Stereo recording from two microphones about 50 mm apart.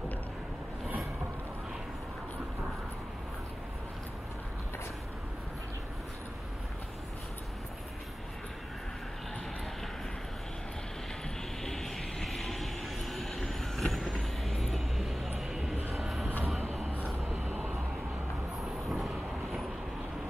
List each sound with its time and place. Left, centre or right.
11.6 s vehicle: centre
17.2 s vehicle: right
18.6 s vehicle: centre